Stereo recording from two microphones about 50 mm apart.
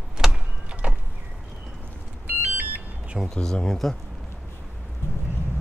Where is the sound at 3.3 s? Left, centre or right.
Centre.